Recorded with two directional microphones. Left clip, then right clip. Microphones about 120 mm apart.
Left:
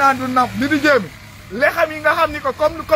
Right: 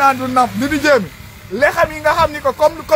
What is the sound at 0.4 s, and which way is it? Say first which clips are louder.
A man's voice: right 2 dB; 40° right (ahead or behind).